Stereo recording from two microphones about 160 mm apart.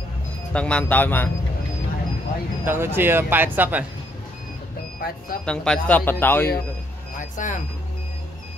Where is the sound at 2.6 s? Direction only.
15° right (ahead or behind).